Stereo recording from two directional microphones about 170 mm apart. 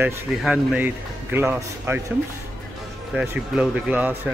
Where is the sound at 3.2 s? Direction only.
5° right (ahead or behind).